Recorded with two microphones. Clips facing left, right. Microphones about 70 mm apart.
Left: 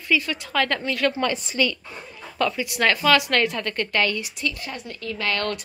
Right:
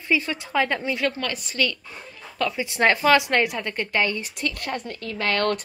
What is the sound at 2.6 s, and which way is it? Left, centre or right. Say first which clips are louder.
Speech: right 2 dB; right.